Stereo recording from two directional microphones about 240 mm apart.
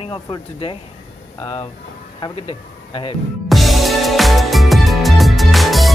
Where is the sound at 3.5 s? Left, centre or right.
Centre.